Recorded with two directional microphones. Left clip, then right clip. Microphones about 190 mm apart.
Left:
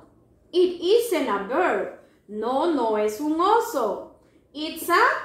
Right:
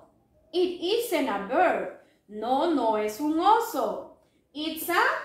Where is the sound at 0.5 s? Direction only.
15° right (ahead or behind).